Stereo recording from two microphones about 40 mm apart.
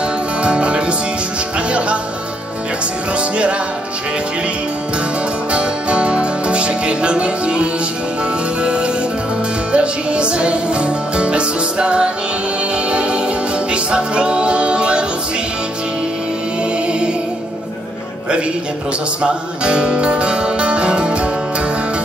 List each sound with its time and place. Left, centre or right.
0.4 s music: right
5.5 s music: right
8.6 s music: right
13.7 s music: right
19.2 s music: right